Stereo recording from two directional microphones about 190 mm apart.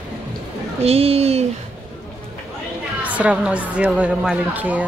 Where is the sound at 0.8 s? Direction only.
30° right (ahead or behind).